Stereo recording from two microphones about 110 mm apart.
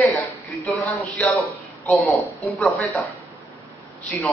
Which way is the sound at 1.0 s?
20° left (ahead or behind).